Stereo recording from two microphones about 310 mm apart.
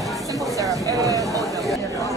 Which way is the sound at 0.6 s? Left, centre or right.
Centre.